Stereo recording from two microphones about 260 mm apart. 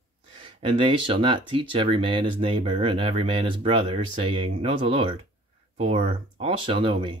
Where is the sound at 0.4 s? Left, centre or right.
Centre.